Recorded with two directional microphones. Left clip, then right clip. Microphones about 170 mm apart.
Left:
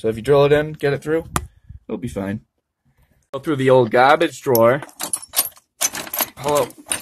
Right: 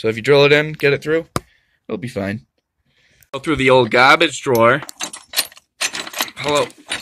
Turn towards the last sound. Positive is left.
turn(degrees=-10)  # may be behind; listen again after turning